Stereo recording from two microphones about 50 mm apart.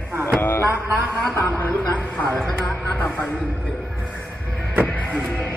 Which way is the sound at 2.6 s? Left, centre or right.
Left.